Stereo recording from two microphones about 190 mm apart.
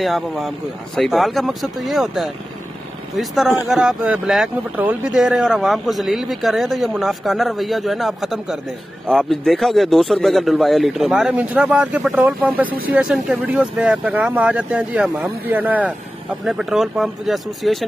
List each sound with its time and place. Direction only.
0.0 s speech: centre (ahead or behind)